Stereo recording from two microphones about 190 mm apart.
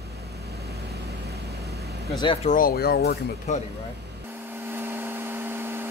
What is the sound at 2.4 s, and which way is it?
Speech, 45° left (ahead or behind).